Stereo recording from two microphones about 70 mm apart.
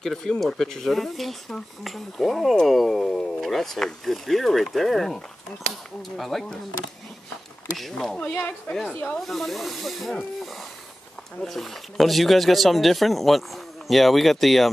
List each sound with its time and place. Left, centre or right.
0.0 s speech: centre
8.2 s speech: centre
9.3 s speech: centre